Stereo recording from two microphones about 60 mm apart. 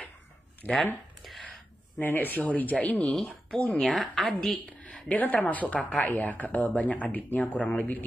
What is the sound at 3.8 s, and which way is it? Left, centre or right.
Speech, centre.